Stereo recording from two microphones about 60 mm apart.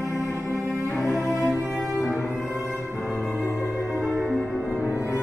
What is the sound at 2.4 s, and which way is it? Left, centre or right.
Music, left.